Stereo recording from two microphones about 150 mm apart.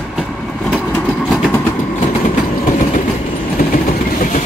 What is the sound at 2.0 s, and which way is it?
Train, 60° left (ahead or behind).